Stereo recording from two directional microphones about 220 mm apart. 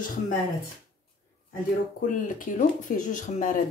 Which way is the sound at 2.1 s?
35° left (ahead or behind).